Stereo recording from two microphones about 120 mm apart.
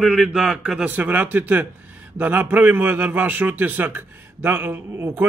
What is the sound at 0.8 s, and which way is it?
A man's voice, 15° right (ahead or behind).